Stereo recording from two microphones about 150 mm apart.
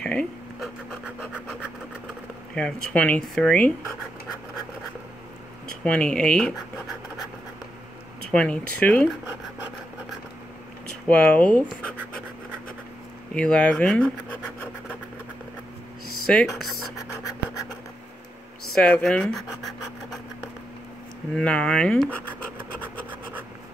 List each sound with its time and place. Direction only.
0.0 s writing: 5° left (ahead or behind)
2.5 s speech: 5° left (ahead or behind)
5.9 s speech: 5° left (ahead or behind)
8.3 s speech: 5° left (ahead or behind)
9.2 s scratch: 15° right (ahead or behind)
11.1 s speech: 10° left (ahead or behind)
13.3 s speech: 5° left (ahead or behind)
16.3 s speech: 5° left (ahead or behind)
18.7 s speech: 5° left (ahead or behind)
21.4 s speech: 5° left (ahead or behind)
22.3 s scratch: 10° right (ahead or behind)